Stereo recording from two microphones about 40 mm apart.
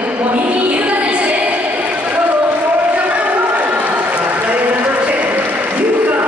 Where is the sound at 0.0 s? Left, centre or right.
Right.